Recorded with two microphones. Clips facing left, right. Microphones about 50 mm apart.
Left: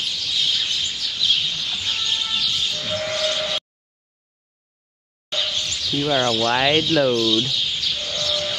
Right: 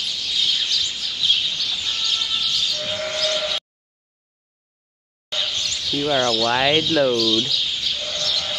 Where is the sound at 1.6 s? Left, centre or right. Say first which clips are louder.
Even; left.